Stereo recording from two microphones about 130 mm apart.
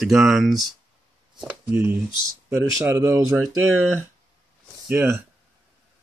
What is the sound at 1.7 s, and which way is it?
Speech, 15° right (ahead or behind).